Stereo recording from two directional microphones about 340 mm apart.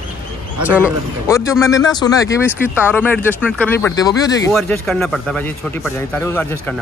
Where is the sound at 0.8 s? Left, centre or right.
Centre.